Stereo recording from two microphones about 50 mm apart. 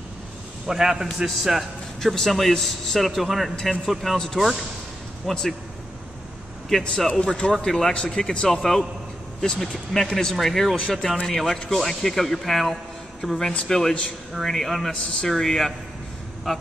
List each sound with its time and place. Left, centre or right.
0.7 s a man's voice: centre
7.1 s a man's voice: centre
8.5 s a man's voice: centre